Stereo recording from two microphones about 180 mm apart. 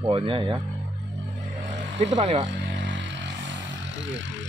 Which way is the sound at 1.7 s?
35° right (ahead or behind).